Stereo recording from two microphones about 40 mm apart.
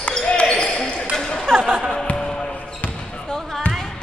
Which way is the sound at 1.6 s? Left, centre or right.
Centre.